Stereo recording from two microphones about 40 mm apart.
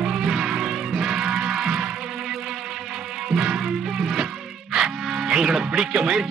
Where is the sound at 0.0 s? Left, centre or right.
Centre.